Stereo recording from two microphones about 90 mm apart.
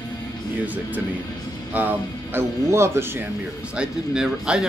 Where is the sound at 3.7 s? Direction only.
10° right (ahead or behind).